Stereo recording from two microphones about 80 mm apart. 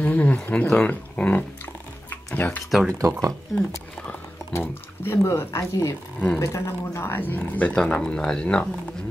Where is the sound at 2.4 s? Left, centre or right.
Left.